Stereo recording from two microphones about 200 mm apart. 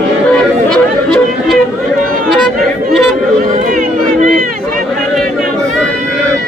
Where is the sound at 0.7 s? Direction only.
5° left (ahead or behind).